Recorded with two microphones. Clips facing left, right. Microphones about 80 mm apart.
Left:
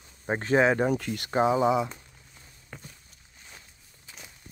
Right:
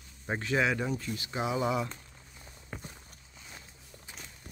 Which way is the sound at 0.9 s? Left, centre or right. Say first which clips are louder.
Left 6 dB; left.